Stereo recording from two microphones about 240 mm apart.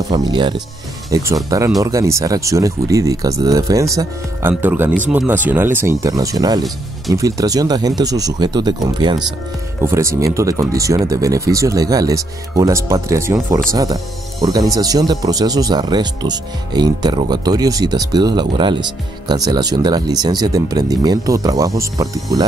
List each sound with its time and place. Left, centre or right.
0.1 s speech: centre